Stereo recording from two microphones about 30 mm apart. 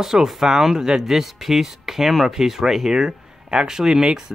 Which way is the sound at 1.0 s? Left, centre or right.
Centre.